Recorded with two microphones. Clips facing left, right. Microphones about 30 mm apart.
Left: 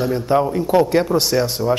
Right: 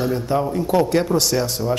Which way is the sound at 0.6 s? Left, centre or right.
Centre.